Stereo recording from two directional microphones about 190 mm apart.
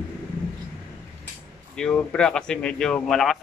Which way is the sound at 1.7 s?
5° left (ahead or behind).